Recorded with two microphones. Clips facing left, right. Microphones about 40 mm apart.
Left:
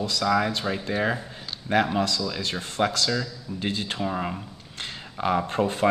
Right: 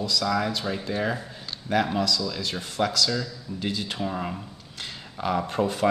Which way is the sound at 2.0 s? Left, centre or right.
Left.